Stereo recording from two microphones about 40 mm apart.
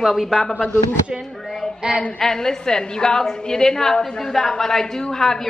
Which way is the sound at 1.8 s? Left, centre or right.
Right.